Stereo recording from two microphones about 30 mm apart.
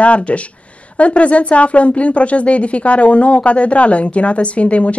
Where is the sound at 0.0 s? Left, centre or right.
Left.